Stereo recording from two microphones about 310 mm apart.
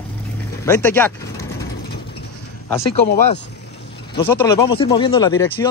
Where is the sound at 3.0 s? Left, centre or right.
Left.